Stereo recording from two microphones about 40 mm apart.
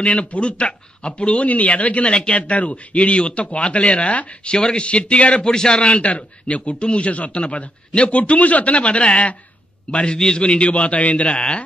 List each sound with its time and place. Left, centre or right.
0.0 s speech: left
5.5 s speech: centre
6.0 s a man's voice: left
10.1 s a man's voice: centre; by 11.3 s left
11.3 s speech: left